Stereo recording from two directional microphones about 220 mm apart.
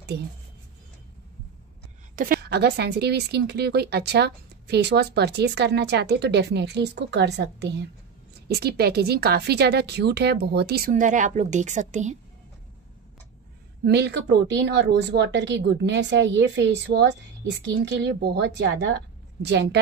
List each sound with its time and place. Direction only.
2.1 s speech: 40° right (ahead or behind)
13.8 s speech: 50° right (ahead or behind)